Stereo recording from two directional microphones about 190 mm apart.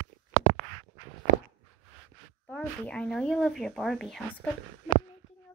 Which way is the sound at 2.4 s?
5° left (ahead or behind).